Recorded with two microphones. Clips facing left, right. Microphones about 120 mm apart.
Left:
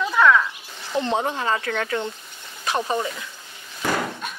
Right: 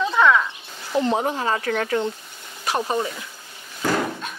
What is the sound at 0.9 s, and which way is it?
Speech, 30° right (ahead or behind).